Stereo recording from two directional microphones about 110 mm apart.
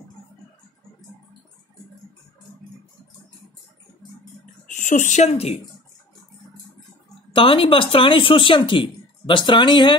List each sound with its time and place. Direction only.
4.7 s speech: 85° left
7.3 s speech: 55° left (ahead or behind)